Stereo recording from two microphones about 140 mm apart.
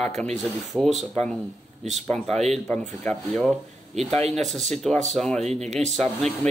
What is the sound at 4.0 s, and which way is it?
Speech, 50° right (ahead or behind).